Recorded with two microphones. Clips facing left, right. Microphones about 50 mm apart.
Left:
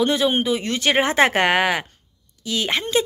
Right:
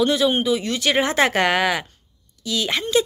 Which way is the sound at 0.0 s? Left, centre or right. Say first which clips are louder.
Right 1 dB; left.